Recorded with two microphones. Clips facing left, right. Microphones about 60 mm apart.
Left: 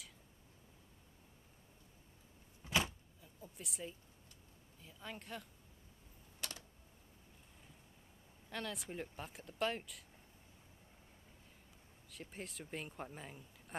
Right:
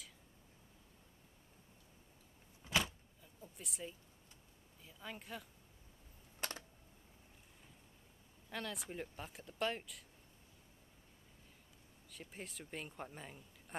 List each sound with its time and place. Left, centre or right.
2.6 s vehicle: left
3.2 s a sound: centre
4.8 s speech: centre
8.5 s speech: centre
12.1 s speech: centre